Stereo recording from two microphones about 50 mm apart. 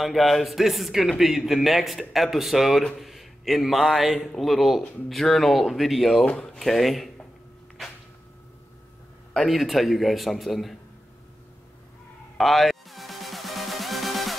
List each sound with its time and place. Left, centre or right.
0.0 s a man's voice: centre
6.2 s speech: centre
6.6 s a man's voice: centre
9.3 s a man's voice: centre
12.4 s music: centre